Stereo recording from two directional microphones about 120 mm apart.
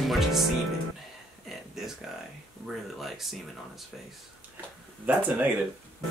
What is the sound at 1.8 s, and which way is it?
Music, 5° right (ahead or behind).